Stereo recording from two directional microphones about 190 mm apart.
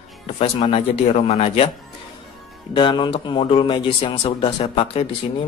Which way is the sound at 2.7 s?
25° left (ahead or behind).